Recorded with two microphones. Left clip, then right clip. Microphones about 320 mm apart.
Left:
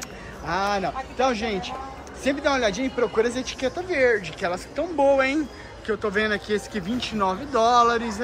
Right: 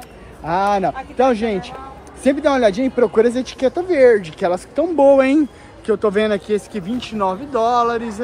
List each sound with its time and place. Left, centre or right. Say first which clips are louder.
0.5 s speech: right 8 dB; centre